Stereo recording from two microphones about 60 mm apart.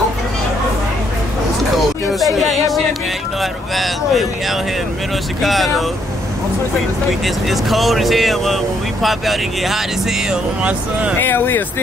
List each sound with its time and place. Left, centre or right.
2.4 s speech: centre
7.2 s speech: centre
10.6 s speech: right
11.1 s speech: left